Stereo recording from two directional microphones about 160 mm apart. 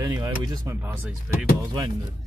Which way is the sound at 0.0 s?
20° right (ahead or behind).